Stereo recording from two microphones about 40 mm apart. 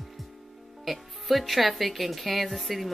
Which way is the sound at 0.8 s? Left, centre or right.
Centre.